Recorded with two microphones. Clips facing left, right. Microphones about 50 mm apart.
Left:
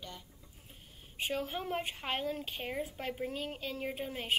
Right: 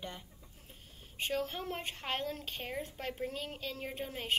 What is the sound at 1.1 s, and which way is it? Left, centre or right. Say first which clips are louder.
A woman's voice: even; centre.